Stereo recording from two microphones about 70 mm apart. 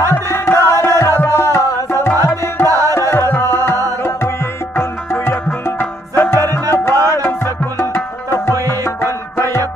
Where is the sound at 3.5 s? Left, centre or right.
Left.